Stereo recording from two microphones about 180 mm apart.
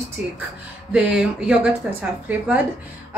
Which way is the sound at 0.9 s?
5° right (ahead or behind).